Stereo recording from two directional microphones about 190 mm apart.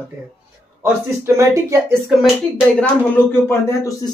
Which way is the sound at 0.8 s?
15° right (ahead or behind).